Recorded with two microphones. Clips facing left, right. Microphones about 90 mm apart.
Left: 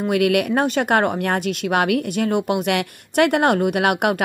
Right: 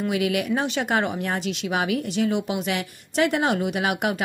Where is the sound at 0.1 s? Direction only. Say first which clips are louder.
Left 8 dB; 60° left (ahead or behind).